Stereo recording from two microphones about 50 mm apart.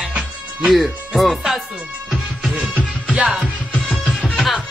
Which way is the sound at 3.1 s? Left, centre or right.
Centre.